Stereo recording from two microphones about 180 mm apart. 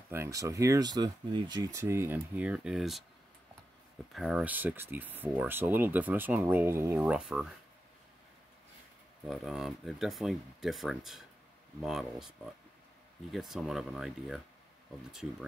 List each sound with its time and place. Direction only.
0.1 s speech: 15° right (ahead or behind); by 3.1 s centre (ahead or behind)
4.1 s speech: centre (ahead or behind)
9.2 s speech: centre (ahead or behind)